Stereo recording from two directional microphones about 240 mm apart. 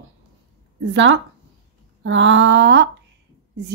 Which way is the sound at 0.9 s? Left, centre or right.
Right.